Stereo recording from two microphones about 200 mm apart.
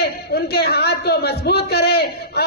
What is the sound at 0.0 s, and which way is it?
A man's voice, 50° left (ahead or behind).